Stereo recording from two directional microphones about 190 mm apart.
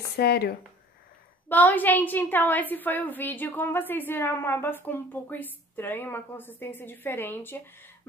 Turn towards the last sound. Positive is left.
turn(degrees=10)  # may be behind; listen again after turning